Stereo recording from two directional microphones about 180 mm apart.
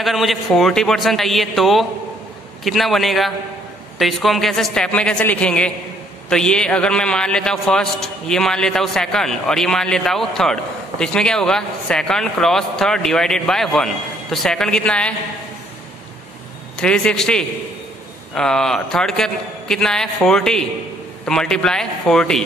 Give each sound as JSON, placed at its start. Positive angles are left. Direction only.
{"t": 0.0, "sound": "a man's voice", "side_deg": 0}
{"t": 16.7, "sound": "a man's voice", "side_deg": 5}